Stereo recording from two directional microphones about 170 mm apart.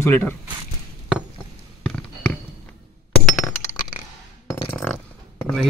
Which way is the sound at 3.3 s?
15° left (ahead or behind).